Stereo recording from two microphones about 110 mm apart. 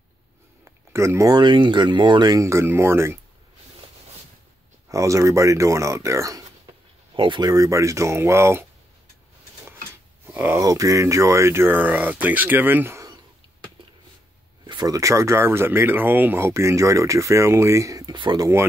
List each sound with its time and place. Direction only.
0.7 s a sound: 25° right (ahead or behind)
1.3 s speech: 45° right (ahead or behind); by 3.2 s 20° right (ahead or behind)
4.8 s speech: 30° right (ahead or behind)
7.2 s speech: 45° right (ahead or behind); by 8.6 s 25° right (ahead or behind)
10.2 s a sound: 20° right (ahead or behind)
10.6 s speech: 30° right (ahead or behind)
14.7 s speech: 35° right (ahead or behind)
18.4 s speech: 20° right (ahead or behind)